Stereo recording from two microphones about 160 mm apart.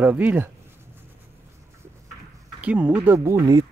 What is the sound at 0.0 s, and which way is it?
Speech, 10° right (ahead or behind).